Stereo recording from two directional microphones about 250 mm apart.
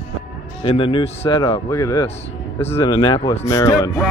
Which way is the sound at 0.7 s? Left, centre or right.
Left.